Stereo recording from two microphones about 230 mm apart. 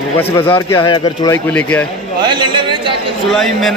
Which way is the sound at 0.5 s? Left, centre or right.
Left.